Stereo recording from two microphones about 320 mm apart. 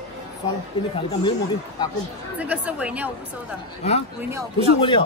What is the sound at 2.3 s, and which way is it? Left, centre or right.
Speech, centre.